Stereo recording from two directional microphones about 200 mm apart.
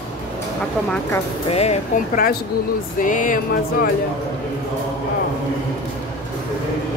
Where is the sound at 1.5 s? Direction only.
30° left (ahead or behind).